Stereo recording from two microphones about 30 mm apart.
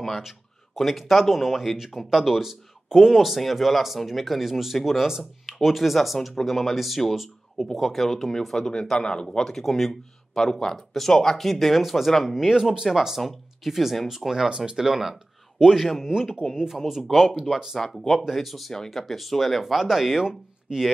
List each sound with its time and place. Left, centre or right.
0.7 s speech: centre
8.9 s speech: left
9.4 s speech: centre
12.4 s speech: centre
16.1 s speech: centre
16.7 s speech: centre
17.7 s speech: centre
18.3 s speech: centre
20.2 s speech: right